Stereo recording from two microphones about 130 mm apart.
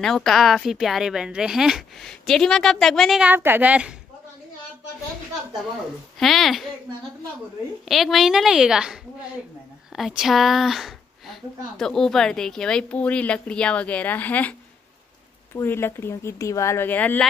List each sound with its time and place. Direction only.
0.0 s speech: centre (ahead or behind)
3.3 s a woman's voice: 15° right (ahead or behind)
6.1 s speech: centre (ahead or behind)
7.9 s speech: centre (ahead or behind)
9.9 s speech: centre (ahead or behind)
15.5 s speech: 20° left (ahead or behind)